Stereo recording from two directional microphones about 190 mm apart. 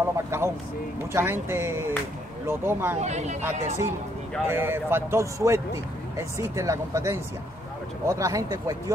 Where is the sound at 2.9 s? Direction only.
35° right (ahead or behind).